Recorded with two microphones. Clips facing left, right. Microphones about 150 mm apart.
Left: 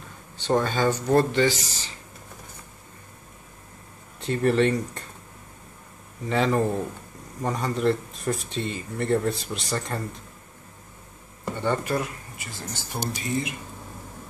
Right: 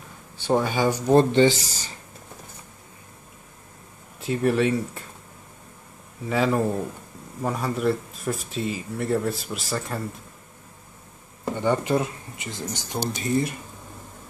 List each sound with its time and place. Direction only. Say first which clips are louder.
0.4 s speech: right 1 dB; 10° right (ahead or behind)
1.3 s speech: right 4 dB; 25° right (ahead or behind)
4.2 s speech: even; 5° right (ahead or behind)
6.2 s speech: even; 5° right (ahead or behind)
11.5 s speech: right 3 dB; 15° right (ahead or behind)
13.2 s speech: right 6 dB; 40° right (ahead or behind)